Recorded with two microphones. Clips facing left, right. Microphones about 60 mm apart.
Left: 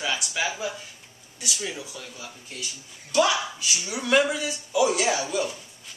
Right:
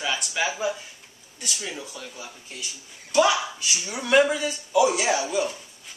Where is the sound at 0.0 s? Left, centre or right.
Centre.